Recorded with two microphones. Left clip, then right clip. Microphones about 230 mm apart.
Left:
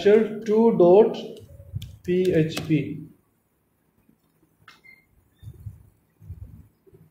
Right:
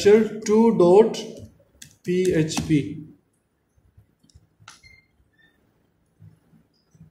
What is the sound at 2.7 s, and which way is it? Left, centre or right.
Mantra, right.